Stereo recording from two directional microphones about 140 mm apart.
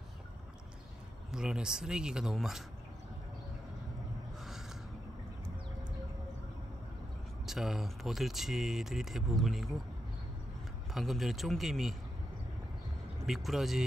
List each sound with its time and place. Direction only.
1.3 s speech: 5° right (ahead or behind)
7.4 s speech: 5° right (ahead or behind)
10.9 s speech: centre (ahead or behind)
13.3 s speech: centre (ahead or behind)